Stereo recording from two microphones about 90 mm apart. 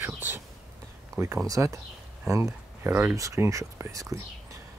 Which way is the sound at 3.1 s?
35° right (ahead or behind).